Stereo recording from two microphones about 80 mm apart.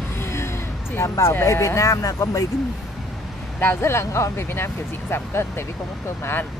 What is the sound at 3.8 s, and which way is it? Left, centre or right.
Speech, left.